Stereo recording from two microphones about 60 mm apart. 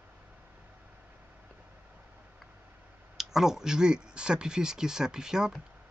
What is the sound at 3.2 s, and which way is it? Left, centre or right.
Speech, centre.